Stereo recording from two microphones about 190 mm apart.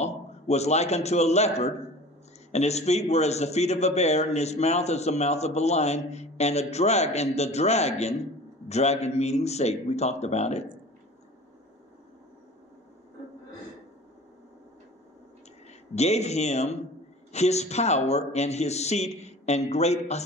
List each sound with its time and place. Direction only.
0.0 s a man's voice: 35° left (ahead or behind)
15.9 s a man's voice: 35° left (ahead or behind)